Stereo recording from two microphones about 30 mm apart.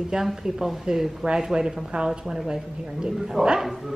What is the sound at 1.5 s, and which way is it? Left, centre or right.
A woman's voice, right.